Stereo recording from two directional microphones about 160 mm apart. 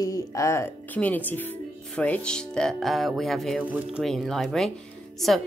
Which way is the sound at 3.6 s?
10° right (ahead or behind).